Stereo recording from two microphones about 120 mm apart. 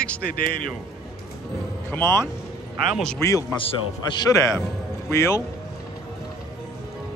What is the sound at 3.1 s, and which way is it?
A man's voice, 25° left (ahead or behind).